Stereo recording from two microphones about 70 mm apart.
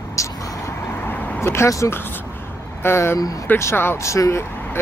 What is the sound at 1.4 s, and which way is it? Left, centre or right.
Speech, left.